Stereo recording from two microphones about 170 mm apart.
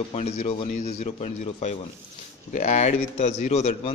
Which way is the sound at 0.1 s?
40° left (ahead or behind).